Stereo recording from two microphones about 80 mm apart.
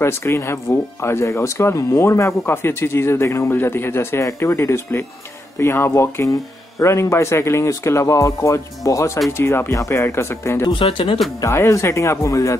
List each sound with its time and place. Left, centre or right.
0.0 s speech: left
10.7 s speech: left
11.4 s speech: left